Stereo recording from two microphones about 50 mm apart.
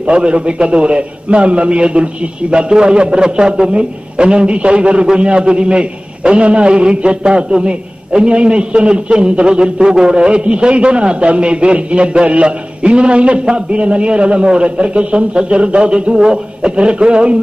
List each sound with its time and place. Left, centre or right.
0.0 s a man's voice: right